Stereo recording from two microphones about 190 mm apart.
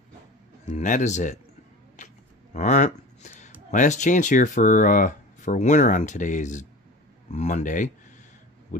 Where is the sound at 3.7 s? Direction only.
40° left (ahead or behind).